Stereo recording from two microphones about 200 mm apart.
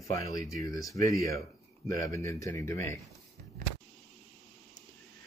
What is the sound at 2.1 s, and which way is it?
Speech, 15° left (ahead or behind).